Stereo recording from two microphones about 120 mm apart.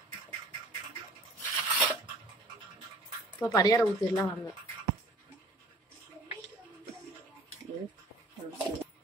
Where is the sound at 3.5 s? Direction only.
30° left (ahead or behind).